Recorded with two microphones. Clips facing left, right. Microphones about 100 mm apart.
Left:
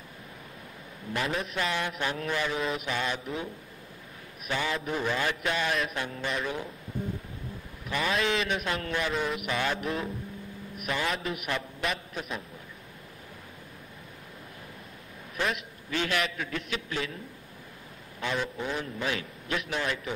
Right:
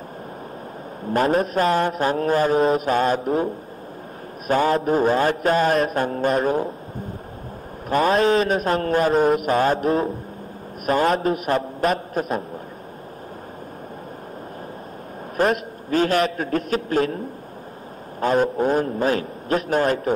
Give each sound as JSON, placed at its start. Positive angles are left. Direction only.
{"t": 1.0, "sound": "a man's voice", "side_deg": -40}
{"t": 4.5, "sound": "a man's voice", "side_deg": -45}
{"t": 7.9, "sound": "a man's voice", "side_deg": -40}
{"t": 15.3, "sound": "a man's voice", "side_deg": -40}
{"t": 18.2, "sound": "a man's voice", "side_deg": -45}